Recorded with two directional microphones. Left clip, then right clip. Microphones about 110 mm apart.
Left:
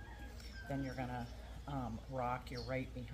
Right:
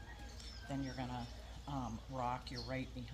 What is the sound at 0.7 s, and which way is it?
Speech, 30° left (ahead or behind).